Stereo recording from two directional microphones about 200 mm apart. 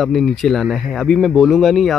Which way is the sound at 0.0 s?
Centre (ahead or behind).